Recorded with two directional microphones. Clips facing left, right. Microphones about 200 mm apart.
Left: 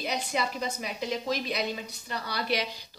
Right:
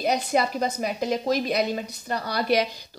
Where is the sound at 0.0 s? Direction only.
45° right (ahead or behind).